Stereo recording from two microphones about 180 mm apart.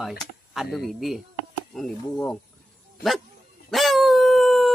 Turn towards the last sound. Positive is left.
turn(degrees=0)  # may be behind; listen again after turning